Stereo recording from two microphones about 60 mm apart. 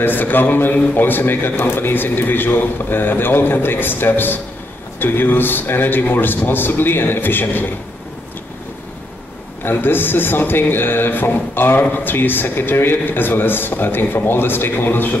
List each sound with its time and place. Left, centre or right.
0.0 s speech: left
9.7 s speech: left